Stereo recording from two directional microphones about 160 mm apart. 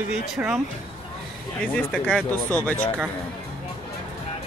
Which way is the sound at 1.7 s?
10° left (ahead or behind).